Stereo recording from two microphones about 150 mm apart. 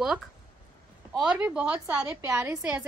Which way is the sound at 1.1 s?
5° right (ahead or behind).